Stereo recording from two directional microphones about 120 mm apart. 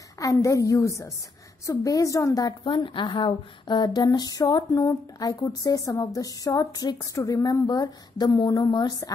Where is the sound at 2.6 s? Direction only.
45° left (ahead or behind).